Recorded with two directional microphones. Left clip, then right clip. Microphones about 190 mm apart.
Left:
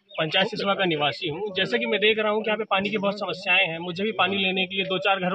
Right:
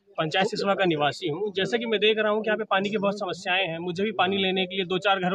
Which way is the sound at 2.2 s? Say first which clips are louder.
Even; 20° right (ahead or behind).